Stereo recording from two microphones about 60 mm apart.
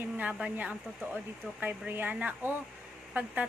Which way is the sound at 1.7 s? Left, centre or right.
Right.